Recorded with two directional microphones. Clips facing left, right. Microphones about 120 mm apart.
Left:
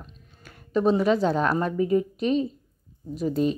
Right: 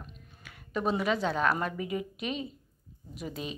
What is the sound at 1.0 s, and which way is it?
Speech, 35° left (ahead or behind).